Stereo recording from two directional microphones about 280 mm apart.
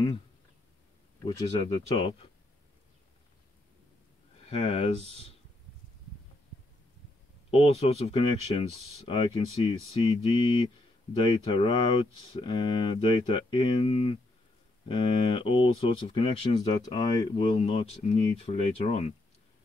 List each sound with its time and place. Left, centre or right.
1.2 s speech: centre
4.5 s speech: left
5.0 s speech: right
7.5 s speech: left